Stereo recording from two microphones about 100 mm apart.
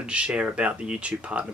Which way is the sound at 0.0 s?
10° right (ahead or behind).